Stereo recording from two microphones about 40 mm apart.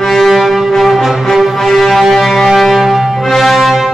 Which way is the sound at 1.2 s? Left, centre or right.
Centre.